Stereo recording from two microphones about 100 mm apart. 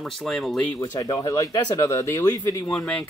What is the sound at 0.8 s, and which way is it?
Speech, 35° left (ahead or behind).